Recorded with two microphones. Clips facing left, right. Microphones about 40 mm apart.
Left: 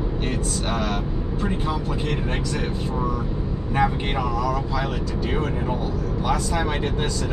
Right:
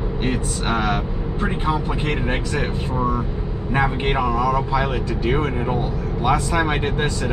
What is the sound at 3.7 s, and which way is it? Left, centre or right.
Speech, right.